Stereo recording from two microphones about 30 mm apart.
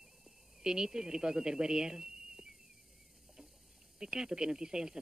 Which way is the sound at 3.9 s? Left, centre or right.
Right.